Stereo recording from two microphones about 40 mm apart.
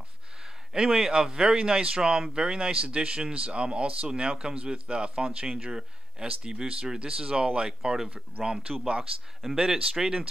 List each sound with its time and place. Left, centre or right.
0.7 s speech: centre
8.1 s speech: right
9.6 s speech: centre